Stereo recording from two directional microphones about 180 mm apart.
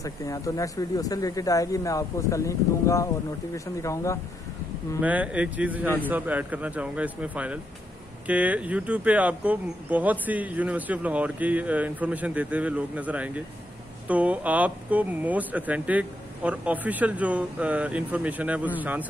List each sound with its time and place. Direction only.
0.0 s speech: 20° left (ahead or behind)
5.0 s speech: 10° right (ahead or behind)